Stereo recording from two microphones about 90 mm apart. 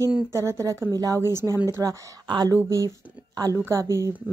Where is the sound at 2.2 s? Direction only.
60° right (ahead or behind).